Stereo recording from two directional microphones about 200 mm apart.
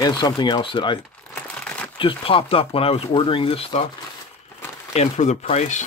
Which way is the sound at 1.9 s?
25° left (ahead or behind).